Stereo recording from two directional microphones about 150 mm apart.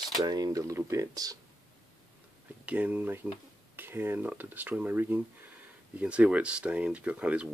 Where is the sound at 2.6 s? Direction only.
10° right (ahead or behind).